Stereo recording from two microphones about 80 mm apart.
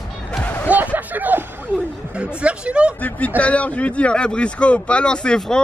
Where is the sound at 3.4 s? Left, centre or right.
Centre.